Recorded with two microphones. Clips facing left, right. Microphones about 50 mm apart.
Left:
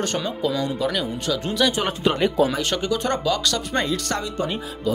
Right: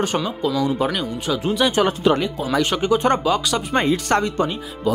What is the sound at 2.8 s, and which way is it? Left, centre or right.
Speech, right.